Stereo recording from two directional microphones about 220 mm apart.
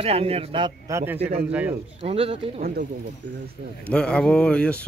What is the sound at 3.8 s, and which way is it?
Speech, 5° left (ahead or behind).